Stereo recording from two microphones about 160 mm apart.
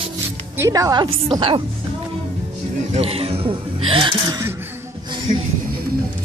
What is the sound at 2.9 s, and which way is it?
Speech, 35° right (ahead or behind).